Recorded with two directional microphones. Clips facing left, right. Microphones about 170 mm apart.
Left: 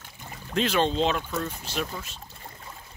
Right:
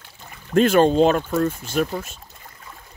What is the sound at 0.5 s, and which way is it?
Speech, 50° right (ahead or behind).